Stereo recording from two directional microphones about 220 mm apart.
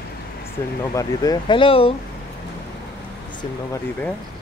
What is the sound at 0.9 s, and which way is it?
Speech, 15° left (ahead or behind).